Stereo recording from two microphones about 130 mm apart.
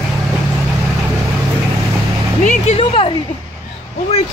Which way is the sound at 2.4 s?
65° left (ahead or behind).